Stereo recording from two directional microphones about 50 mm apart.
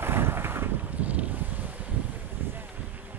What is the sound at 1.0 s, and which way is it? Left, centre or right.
Wind, right.